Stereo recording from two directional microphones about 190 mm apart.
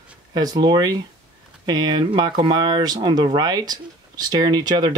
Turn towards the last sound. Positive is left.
turn(degrees=-20)  # may be behind; listen again after turning